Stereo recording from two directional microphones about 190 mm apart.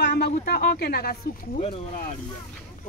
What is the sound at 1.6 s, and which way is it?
Speech, 35° left (ahead or behind).